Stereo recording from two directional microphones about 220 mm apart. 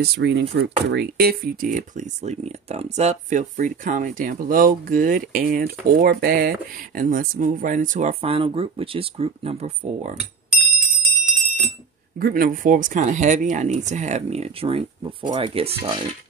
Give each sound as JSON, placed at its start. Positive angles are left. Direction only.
{"t": 0.0, "sound": "speech", "side_deg": -50}
{"t": 10.8, "sound": "bell", "side_deg": 0}
{"t": 12.2, "sound": "speech", "side_deg": -40}